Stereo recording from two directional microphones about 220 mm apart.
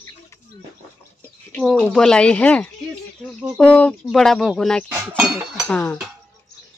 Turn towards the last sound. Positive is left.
turn(degrees=5)  # may be behind; listen again after turning